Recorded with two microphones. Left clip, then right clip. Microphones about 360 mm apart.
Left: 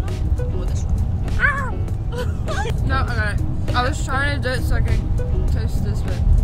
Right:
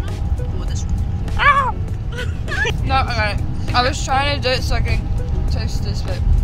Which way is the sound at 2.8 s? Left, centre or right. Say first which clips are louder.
Right 4 dB; centre.